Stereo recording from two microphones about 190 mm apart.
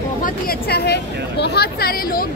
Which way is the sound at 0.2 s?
55° left (ahead or behind).